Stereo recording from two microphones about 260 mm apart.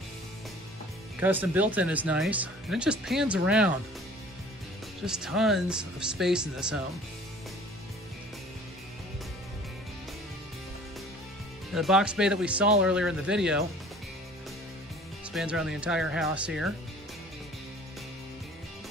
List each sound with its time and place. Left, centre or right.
1.2 s speech: centre
5.0 s speech: centre
11.7 s speech: centre
15.3 s speech: centre